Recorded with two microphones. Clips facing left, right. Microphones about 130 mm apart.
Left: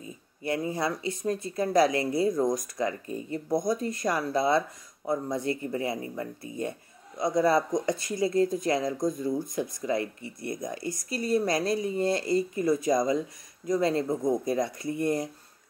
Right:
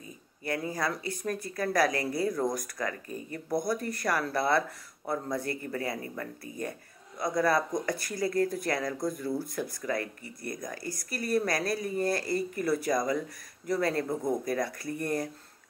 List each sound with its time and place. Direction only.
0.4 s speech: 25° left (ahead or behind)